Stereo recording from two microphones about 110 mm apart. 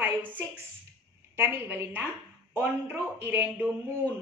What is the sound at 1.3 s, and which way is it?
A woman's voice, 20° right (ahead or behind).